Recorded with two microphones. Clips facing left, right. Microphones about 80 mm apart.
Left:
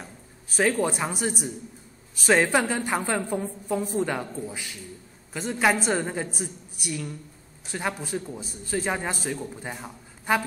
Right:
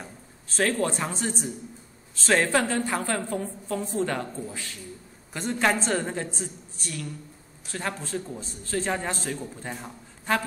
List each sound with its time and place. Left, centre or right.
0.5 s a man's voice: centre
5.3 s a man's voice: centre